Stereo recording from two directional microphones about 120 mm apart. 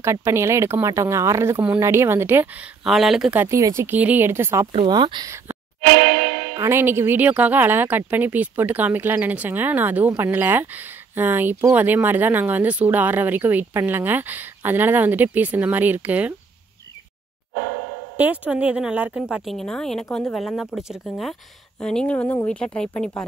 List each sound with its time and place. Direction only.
0.0 s speech: 20° right (ahead or behind)
2.8 s speech: centre (ahead or behind)
3.3 s speech: 25° right (ahead or behind)
4.7 s speech: 40° right (ahead or behind)
6.5 s speech: 20° right (ahead or behind)
18.1 s a woman's voice: 10° right (ahead or behind); by 23.2 s 5° left (ahead or behind)